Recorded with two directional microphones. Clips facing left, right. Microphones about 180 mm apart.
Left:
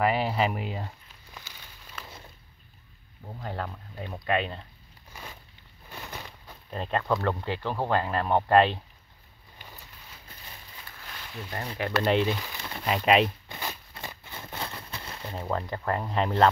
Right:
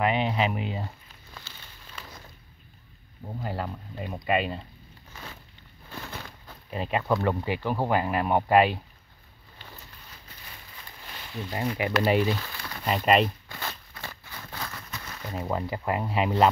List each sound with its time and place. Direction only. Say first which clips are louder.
0.0 s speech: even; 5° left (ahead or behind)
3.3 s speech: right 2 dB; 5° right (ahead or behind)
5.1 s a sound: even; 10° left (ahead or behind)
6.2 s speech: right 1 dB; 5° right (ahead or behind)
11.5 s speech: right 3 dB; 15° right (ahead or behind)
12.4 s a sound: left 1 dB; 20° left (ahead or behind)
12.8 s speech: even; centre (ahead or behind)
13.5 s a sound: even; 15° left (ahead or behind)
14.0 s crumpling: left 1 dB; 20° left (ahead or behind)
15.3 s speech: right 1 dB; 10° right (ahead or behind)